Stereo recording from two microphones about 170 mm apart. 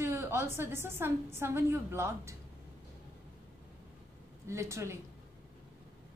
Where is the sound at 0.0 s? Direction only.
15° right (ahead or behind).